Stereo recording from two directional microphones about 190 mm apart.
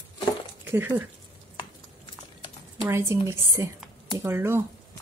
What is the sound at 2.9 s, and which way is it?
Speech, 15° right (ahead or behind).